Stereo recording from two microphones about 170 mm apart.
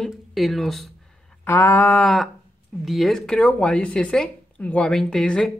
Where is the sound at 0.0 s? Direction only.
Centre (ahead or behind).